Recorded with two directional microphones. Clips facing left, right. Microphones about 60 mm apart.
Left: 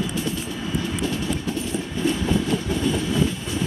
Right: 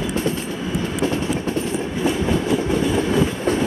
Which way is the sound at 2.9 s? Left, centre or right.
Right.